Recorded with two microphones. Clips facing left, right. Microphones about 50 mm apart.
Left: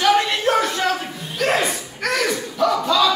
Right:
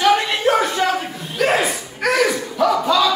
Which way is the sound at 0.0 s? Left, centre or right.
Centre.